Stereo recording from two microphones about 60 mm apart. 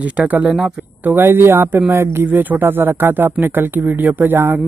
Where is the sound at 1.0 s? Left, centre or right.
Right.